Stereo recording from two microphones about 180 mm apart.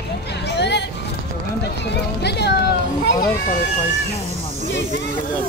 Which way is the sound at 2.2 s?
65° left (ahead or behind).